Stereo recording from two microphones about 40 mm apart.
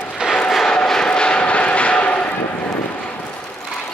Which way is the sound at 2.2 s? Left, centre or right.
Left.